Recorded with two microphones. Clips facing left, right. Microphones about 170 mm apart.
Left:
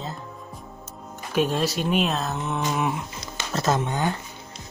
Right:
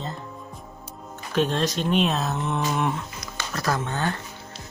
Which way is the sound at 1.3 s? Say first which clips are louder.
Even; 10° left (ahead or behind).